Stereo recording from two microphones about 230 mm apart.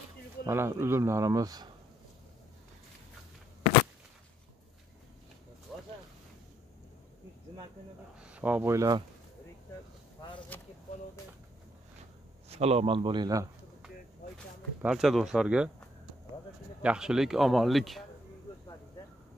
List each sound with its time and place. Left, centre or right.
0.5 s speech: centre
5.7 s a sound: centre
8.2 s speech: centre
10.5 s speech: centre
12.4 s a man's voice: right
14.8 s speech: centre
16.8 s speech: centre